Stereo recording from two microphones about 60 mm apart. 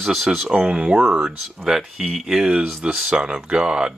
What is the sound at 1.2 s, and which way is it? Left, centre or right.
Speech, centre.